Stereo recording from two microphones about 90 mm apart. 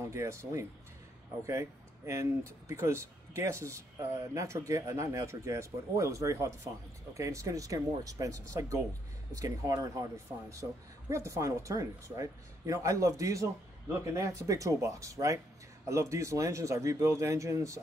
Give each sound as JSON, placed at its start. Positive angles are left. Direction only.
{"t": 0.0, "sound": "speech", "side_deg": -30}